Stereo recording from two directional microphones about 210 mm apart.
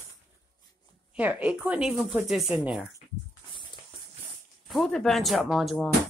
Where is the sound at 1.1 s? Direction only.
5° right (ahead or behind).